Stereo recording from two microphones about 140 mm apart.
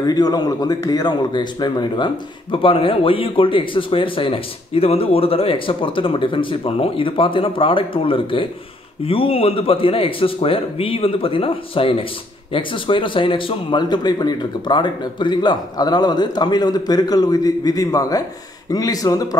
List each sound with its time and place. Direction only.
0.0 s a man's voice: 30° left (ahead or behind)